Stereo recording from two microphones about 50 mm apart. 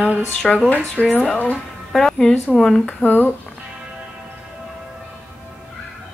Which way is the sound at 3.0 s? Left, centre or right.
Left.